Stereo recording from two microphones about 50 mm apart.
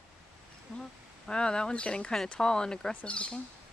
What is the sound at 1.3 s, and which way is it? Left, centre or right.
Speech, centre.